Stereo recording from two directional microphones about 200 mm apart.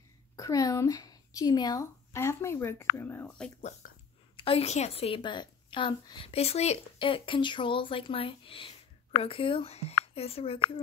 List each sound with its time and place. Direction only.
0.4 s speech: 15° left (ahead or behind)
3.8 s a sound: 45° left (ahead or behind)
4.4 s a child's voice: 30° left (ahead or behind)